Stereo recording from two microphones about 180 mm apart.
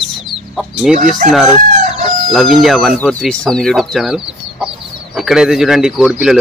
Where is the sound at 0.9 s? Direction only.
45° right (ahead or behind).